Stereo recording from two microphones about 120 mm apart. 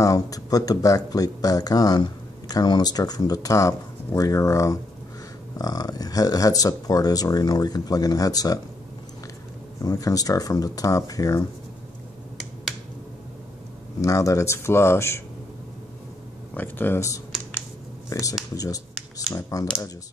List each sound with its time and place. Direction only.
0.0 s speech: 30° left (ahead or behind)
9.8 s speech: 30° left (ahead or behind)
14.0 s speech: 25° left (ahead or behind)
16.5 s speech: 15° left (ahead or behind)
19.3 s speech: 30° left (ahead or behind)